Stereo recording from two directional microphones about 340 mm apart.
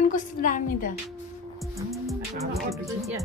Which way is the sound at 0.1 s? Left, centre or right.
Left.